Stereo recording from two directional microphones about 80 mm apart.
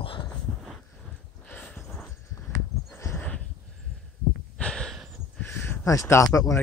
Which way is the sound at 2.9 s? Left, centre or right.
Left.